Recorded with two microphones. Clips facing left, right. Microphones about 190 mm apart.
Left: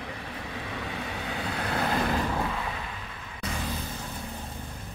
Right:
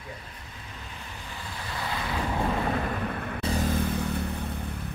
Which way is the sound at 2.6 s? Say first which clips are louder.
Right 8 dB; 50° right (ahead or behind).